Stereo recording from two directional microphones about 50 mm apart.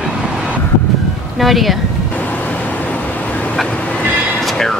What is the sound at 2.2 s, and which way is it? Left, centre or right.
Vehicle, left.